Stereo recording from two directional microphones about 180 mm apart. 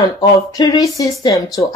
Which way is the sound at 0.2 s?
20° left (ahead or behind).